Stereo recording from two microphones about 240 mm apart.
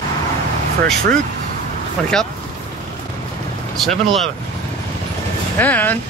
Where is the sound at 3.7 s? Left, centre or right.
Centre.